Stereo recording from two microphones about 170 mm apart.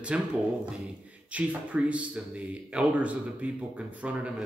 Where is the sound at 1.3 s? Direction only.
10° right (ahead or behind).